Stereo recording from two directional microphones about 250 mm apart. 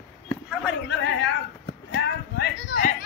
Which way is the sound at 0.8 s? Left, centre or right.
Left.